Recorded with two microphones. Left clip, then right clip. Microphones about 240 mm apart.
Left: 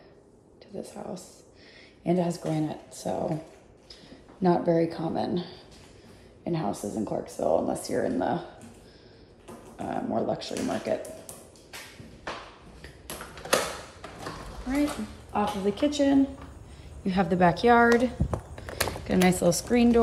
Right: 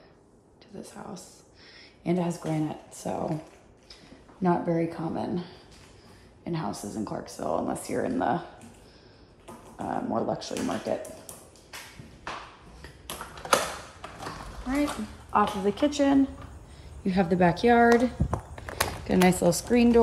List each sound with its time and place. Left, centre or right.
0.7 s speech: centre
2.4 s speech: centre
4.4 s speech: right
6.4 s speech: right
6.8 s speech: centre
7.3 s speech: right
8.1 s speech: centre
9.8 s speech: centre
12.3 s a sound: centre
17.0 s speech: centre